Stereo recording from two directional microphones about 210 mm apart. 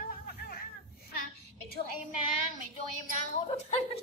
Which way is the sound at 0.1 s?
45° left (ahead or behind).